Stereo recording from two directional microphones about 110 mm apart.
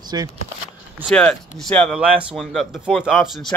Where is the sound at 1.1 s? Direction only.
10° left (ahead or behind).